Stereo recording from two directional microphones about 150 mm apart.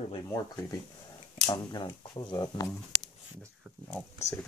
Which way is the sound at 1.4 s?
25° left (ahead or behind).